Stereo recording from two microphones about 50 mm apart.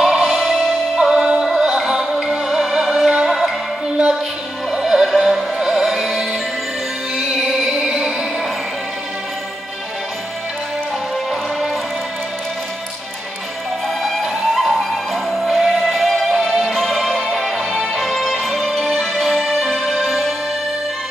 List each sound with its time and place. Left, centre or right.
0.0 s music: centre
1.1 s music: right
1.4 s music: centre
4.6 s music: centre
13.8 s music: centre